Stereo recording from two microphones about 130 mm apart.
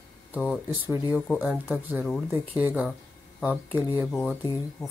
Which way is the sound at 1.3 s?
10° right (ahead or behind).